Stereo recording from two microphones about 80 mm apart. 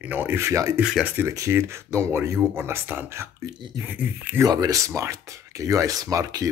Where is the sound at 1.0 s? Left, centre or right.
Right.